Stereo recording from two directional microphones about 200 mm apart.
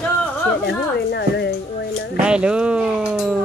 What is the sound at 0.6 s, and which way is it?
Speech, 60° left (ahead or behind).